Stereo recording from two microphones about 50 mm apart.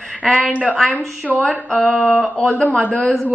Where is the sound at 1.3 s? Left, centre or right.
Left.